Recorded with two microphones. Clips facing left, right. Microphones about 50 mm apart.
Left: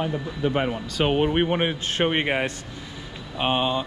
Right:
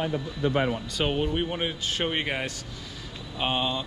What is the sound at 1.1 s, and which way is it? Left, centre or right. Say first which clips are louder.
Speech: left 7 dB; left.